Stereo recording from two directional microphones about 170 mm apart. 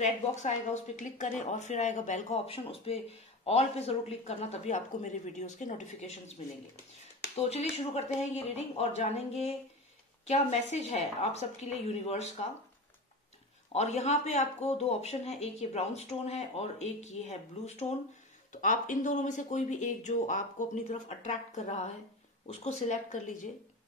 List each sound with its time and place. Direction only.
0.0 s speech: 45° left (ahead or behind)
7.3 s speech: 40° left (ahead or behind)
13.7 s speech: 40° left (ahead or behind)